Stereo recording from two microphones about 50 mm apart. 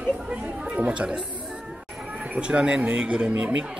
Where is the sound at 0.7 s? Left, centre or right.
Right.